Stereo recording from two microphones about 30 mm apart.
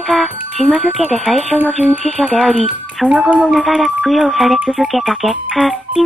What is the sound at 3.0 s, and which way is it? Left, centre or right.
Speech, left.